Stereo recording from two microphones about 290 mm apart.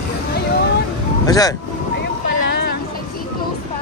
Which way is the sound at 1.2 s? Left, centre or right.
Centre.